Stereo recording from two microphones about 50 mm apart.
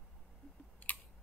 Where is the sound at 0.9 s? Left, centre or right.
Left.